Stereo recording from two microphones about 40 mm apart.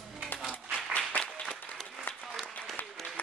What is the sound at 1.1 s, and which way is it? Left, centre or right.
Applause, left.